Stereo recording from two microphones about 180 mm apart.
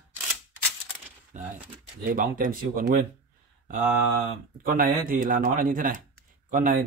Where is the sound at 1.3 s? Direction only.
45° right (ahead or behind).